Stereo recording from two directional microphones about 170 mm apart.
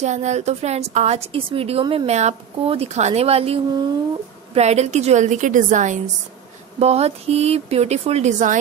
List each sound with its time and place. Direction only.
0.0 s a woman's voice: 45° right (ahead or behind)
4.6 s a woman's voice: 40° right (ahead or behind)